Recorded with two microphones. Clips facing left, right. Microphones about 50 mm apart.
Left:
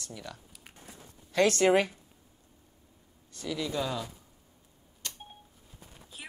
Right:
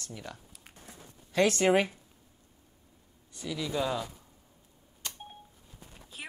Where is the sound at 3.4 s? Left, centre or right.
Centre.